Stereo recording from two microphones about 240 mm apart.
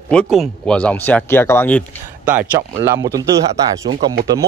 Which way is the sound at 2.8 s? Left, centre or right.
Centre.